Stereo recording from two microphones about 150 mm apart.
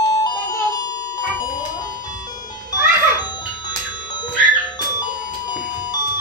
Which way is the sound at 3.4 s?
30° left (ahead or behind).